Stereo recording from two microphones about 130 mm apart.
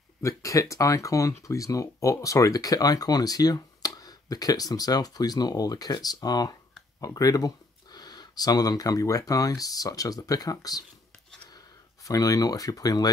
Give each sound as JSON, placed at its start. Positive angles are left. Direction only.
{"t": 0.2, "sound": "speech", "side_deg": 25}